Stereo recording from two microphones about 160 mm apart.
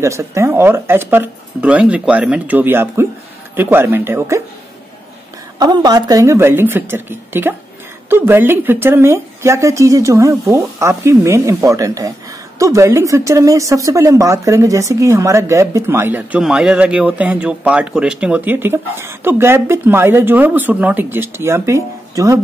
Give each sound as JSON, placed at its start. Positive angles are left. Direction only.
{"t": 0.0, "sound": "speech", "side_deg": -15}
{"t": 5.6, "sound": "speech", "side_deg": -25}